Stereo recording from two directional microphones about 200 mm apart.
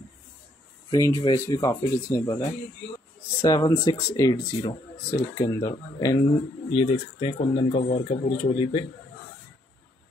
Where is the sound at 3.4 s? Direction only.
15° left (ahead or behind).